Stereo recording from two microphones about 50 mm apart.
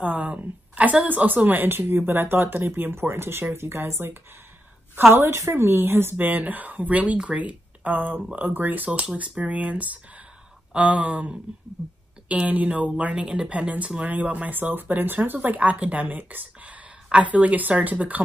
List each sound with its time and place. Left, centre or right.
0.0 s a woman's voice: right
6.1 s a woman's voice: right
12.4 s a woman's voice: right
13.0 s a woman's voice: right